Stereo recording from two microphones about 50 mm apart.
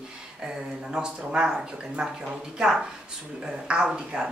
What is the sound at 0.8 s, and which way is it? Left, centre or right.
Speech, centre.